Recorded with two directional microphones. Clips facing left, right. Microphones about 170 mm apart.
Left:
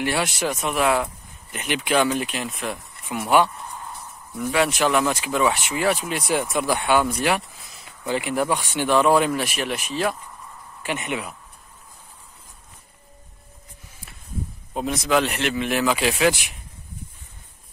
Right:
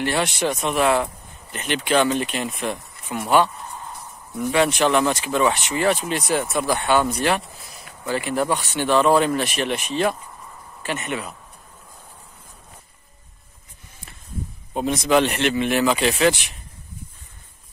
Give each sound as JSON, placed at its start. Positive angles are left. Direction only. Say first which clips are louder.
{"t": 0.0, "sound": "speech", "louder": "right 2 dB", "side_deg": 5}
{"t": 10.8, "sound": "speech", "louder": "even", "side_deg": 15}
{"t": 14.7, "sound": "speech", "louder": "right 3 dB", "side_deg": 0}